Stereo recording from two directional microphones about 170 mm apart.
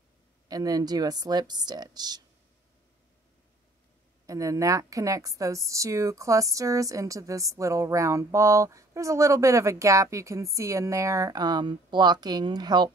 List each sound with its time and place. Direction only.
0.5 s a woman's voice: 20° right (ahead or behind)
4.3 s a woman's voice: 20° right (ahead or behind)